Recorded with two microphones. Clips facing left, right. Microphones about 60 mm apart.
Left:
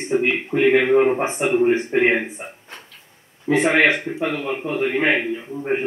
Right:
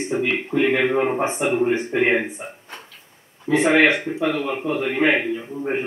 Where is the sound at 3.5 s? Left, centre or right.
Centre.